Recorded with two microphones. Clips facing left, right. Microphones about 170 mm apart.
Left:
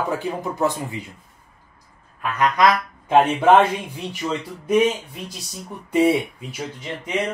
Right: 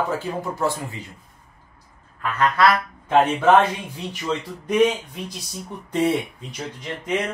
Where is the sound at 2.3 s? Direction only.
15° left (ahead or behind).